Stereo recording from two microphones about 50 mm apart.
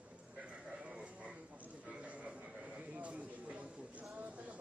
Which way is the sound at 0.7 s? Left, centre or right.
Right.